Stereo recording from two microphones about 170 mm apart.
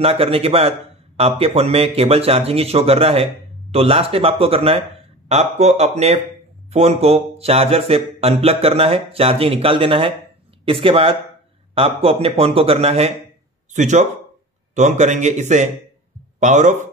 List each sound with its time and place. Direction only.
0.0 s a man's voice: 35° right (ahead or behind)